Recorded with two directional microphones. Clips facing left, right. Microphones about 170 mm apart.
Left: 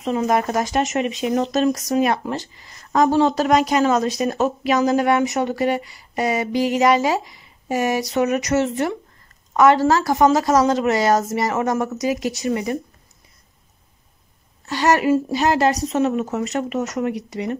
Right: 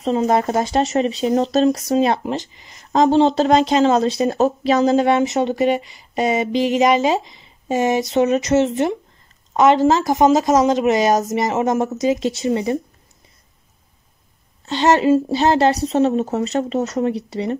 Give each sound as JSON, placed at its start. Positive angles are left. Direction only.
{"t": 0.0, "sound": "speech", "side_deg": -30}
{"t": 14.7, "sound": "speech", "side_deg": -25}